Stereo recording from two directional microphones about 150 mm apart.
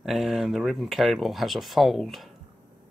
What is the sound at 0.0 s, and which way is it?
Speech, centre (ahead or behind).